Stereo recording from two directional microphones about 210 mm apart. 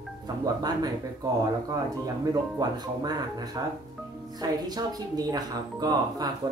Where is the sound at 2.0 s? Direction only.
20° right (ahead or behind).